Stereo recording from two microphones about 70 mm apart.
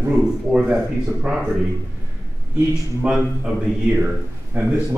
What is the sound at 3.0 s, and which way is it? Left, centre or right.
Speech, centre.